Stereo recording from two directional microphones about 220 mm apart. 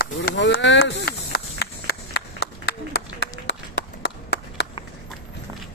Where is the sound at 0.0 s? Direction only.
45° left (ahead or behind).